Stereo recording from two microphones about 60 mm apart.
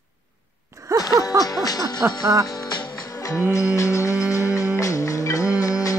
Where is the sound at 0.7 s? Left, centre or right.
Right.